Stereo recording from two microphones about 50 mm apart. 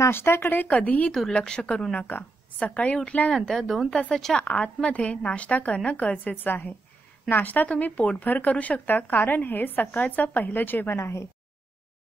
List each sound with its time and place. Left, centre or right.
0.1 s speech: left
0.7 s a woman's voice: left
1.4 s a woman's voice: centre
2.0 s a woman's voice: left
3.3 s speech: centre
4.3 s a woman's voice: left
6.3 s a woman's voice: left
11.0 s a woman's voice: left